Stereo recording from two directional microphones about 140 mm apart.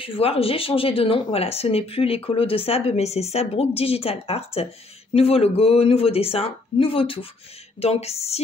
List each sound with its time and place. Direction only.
0.0 s speech: 40° left (ahead or behind)